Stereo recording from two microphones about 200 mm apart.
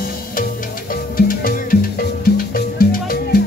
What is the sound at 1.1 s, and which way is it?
Music, 45° left (ahead or behind).